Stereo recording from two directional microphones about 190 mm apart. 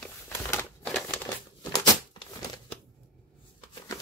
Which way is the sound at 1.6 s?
20° left (ahead or behind).